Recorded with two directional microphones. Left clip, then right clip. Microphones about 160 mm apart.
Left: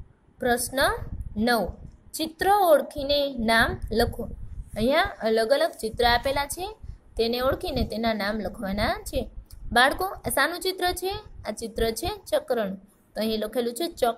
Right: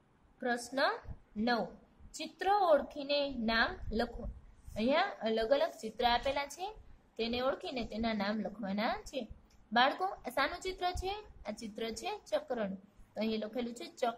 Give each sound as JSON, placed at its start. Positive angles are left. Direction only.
{"t": 0.4, "sound": "a woman's voice", "side_deg": 30}